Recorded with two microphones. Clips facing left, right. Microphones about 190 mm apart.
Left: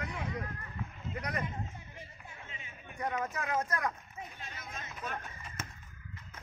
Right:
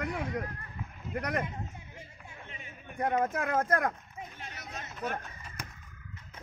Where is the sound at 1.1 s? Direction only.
50° right (ahead or behind).